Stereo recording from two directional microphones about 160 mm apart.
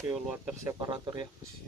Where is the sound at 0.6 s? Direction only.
20° right (ahead or behind).